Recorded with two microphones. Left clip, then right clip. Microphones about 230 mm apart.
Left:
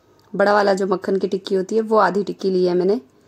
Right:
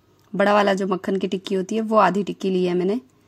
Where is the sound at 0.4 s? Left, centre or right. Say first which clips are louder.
Left 2 dB; right.